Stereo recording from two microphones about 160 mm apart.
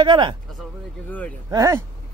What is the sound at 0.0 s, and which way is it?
Speech, 30° right (ahead or behind).